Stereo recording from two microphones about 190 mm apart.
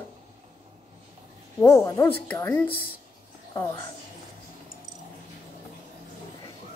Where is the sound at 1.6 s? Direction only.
15° left (ahead or behind).